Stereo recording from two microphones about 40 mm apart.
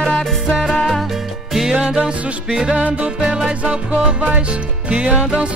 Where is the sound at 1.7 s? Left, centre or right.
Right.